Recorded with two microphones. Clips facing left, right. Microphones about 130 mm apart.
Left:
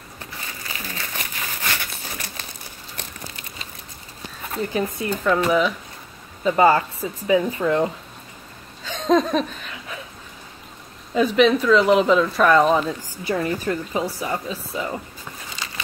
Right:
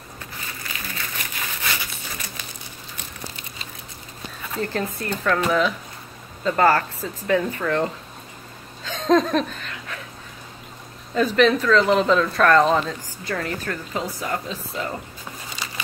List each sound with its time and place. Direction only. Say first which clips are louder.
0.7 s crumpling: left 1 dB; 35° left (ahead or behind)
4.6 s speech: left 2 dB; 10° left (ahead or behind)
8.8 s laughter: even; centre (ahead or behind)
11.1 s speech: left 1 dB; 5° left (ahead or behind)